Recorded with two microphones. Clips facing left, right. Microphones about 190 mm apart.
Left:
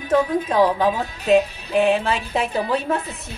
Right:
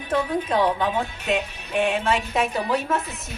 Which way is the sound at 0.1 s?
40° left (ahead or behind).